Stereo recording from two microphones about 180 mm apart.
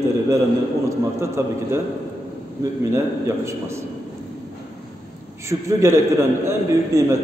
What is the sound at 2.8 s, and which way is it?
A man's voice, 15° right (ahead or behind).